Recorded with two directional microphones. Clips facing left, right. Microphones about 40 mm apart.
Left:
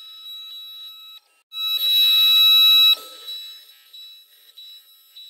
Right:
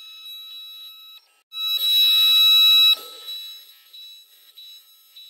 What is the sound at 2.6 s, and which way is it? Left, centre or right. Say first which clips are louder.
Fire alarm: left 1 dB; centre.